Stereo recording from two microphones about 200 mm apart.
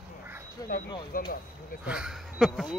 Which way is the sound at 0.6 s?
20° left (ahead or behind).